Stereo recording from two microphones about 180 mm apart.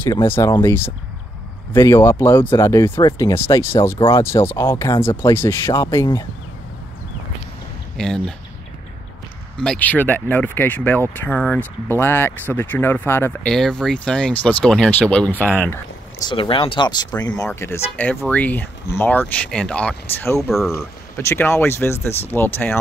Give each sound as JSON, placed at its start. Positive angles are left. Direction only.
{"t": 0.0, "sound": "speech", "side_deg": 15}
{"t": 8.0, "sound": "speech", "side_deg": 5}
{"t": 9.6, "sound": "speech", "side_deg": 5}
{"t": 16.3, "sound": "speech", "side_deg": 30}
{"t": 17.3, "sound": "speech", "side_deg": 10}